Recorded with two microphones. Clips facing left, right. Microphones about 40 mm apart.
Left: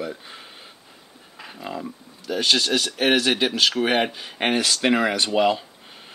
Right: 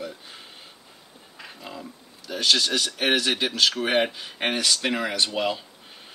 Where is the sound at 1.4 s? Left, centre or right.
Centre.